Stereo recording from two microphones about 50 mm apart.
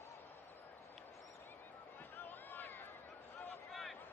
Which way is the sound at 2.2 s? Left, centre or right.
Left.